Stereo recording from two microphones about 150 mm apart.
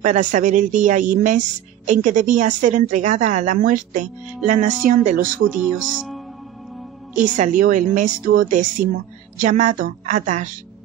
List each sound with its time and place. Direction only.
0.0 s a woman's voice: 55° right (ahead or behind)
5.9 s speech: centre (ahead or behind)
7.2 s a woman's voice: 55° right (ahead or behind)